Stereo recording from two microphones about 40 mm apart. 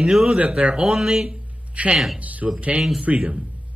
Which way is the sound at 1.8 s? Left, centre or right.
Right.